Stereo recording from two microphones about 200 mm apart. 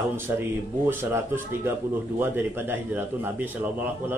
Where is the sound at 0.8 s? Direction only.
10° right (ahead or behind).